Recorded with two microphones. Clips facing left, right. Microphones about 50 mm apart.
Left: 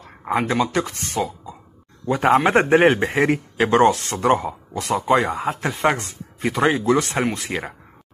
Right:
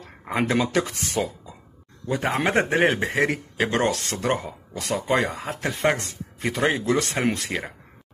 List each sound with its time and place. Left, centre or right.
0.3 s speech: centre
2.0 s speech: left
3.5 s speech: centre
4.7 s speech: centre